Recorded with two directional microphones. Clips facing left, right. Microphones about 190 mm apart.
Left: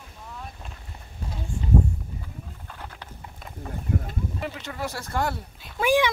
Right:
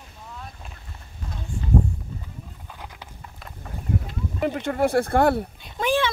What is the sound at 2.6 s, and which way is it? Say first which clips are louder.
Wild animals: even; 15° right (ahead or behind).